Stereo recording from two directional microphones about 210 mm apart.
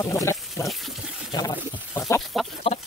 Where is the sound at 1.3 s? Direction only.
20° left (ahead or behind).